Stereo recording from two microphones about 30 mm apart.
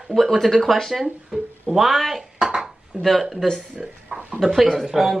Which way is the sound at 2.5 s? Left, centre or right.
Centre.